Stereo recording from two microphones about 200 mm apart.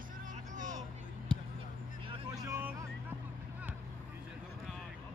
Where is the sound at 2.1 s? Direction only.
20° right (ahead or behind).